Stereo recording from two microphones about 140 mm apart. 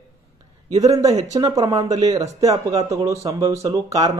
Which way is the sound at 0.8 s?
25° right (ahead or behind).